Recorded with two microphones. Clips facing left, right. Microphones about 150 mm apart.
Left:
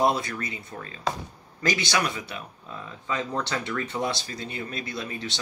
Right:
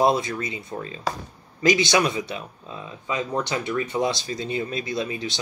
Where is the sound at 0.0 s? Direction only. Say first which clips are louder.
Right 3 dB; 20° right (ahead or behind).